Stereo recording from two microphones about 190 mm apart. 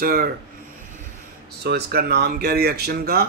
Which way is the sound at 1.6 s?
60° right (ahead or behind).